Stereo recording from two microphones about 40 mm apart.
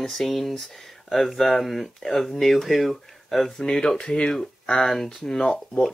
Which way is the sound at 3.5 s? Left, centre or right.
Centre.